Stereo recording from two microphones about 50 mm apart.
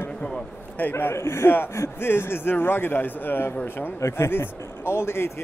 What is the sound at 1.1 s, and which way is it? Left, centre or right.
Speech, left.